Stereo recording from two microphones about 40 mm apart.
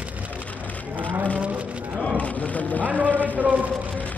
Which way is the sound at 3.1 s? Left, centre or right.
Left.